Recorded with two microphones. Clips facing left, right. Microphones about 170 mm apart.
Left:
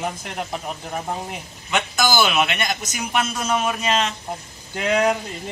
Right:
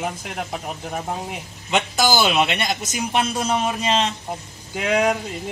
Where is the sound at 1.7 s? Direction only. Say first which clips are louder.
Right 1 dB; 35° right (ahead or behind).